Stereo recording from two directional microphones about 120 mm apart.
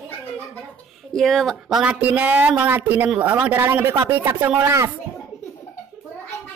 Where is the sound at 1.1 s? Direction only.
Centre (ahead or behind); by 4.9 s 25° right (ahead or behind).